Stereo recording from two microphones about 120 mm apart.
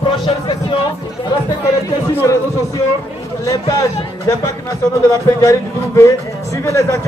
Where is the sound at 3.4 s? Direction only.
30° left (ahead or behind).